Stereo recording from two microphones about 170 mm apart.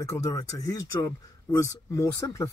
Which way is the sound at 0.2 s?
20° left (ahead or behind).